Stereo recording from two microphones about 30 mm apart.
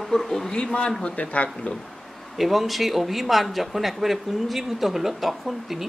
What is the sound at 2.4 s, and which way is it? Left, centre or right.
Speech, centre.